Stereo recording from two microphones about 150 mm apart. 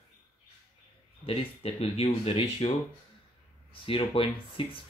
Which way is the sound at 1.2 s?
40° left (ahead or behind).